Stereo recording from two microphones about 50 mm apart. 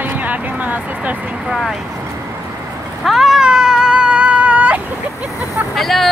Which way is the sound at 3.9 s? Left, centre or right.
Right.